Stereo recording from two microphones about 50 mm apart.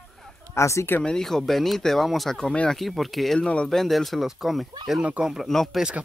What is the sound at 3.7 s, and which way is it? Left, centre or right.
Speech, centre.